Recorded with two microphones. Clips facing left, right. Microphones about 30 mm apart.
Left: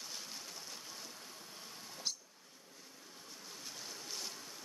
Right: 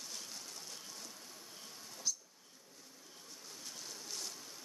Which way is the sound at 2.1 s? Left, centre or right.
Left.